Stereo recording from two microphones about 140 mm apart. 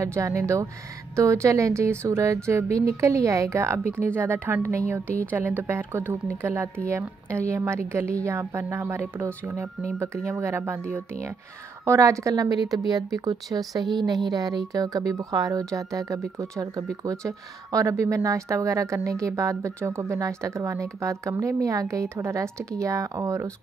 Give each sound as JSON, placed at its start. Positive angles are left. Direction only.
{"t": 0.0, "sound": "speech", "side_deg": -20}